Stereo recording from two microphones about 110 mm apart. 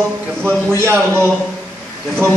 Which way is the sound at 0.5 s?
20° right (ahead or behind).